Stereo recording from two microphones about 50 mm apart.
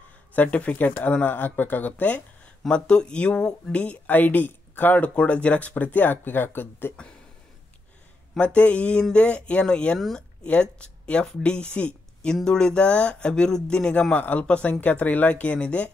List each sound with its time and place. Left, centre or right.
0.3 s speech: left; by 3.7 s centre
3.7 s speech: left
4.1 s speech: left
8.4 s speech: left
14.1 s speech: left